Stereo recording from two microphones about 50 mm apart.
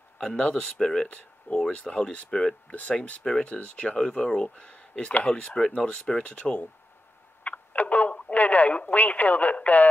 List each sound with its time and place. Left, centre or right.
0.4 s speech: centre
1.0 s speech: left